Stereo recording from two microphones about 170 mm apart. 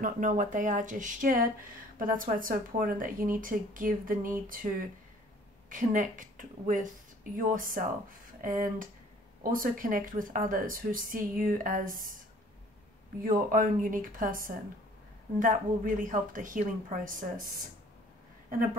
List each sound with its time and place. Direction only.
0.0 s speech: 50° right (ahead or behind)
13.2 s speech: 55° right (ahead or behind)